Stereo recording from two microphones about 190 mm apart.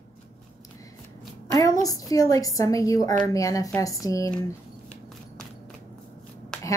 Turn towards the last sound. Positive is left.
turn(degrees=5)  # may be behind; listen again after turning